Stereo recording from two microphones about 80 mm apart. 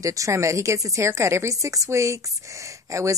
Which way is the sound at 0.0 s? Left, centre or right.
Right.